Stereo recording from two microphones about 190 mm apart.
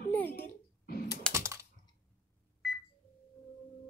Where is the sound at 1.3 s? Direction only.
15° right (ahead or behind).